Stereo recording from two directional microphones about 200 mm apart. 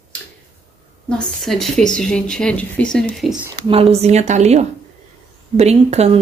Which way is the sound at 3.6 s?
30° right (ahead or behind).